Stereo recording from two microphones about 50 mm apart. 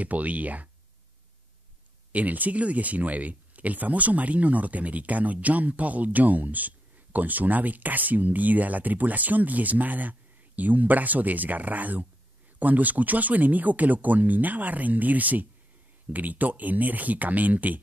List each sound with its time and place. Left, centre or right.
0.0 s speech: right
2.1 s speech: right